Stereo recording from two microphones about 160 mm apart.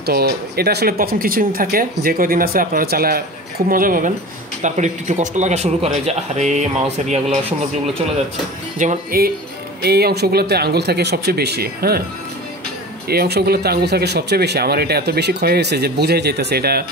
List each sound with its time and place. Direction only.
0.0 s speech: 80° right; by 4.1 s 60° right (ahead or behind)
4.6 s speech: 50° right (ahead or behind)
8.7 s speech: 60° right (ahead or behind)
9.8 s speech: 85° right
13.1 s speech: 85° right